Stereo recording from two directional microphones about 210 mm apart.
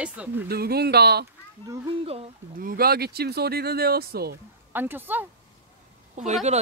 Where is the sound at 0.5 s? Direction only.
50° right (ahead or behind).